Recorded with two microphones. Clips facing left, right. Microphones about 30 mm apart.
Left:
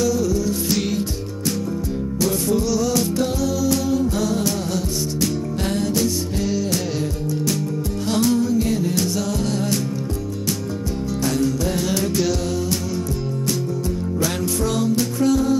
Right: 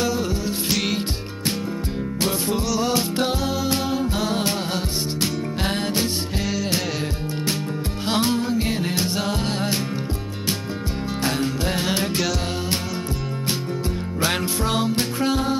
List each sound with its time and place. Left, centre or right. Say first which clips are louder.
0.0 s music: left 4 dB; right
2.1 s music: left 3 dB; right
8.1 s music: left 3 dB; right
11.2 s music: left 2 dB; right
14.2 s music: right 1 dB; right